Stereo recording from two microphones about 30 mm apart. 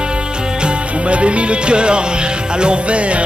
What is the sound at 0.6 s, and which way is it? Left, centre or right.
Music, right.